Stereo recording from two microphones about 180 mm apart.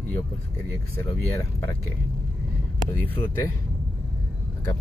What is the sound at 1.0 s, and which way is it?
Speech, 15° left (ahead or behind).